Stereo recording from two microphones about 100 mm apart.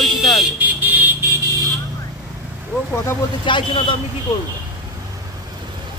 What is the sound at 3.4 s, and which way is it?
Speech, 55° left (ahead or behind).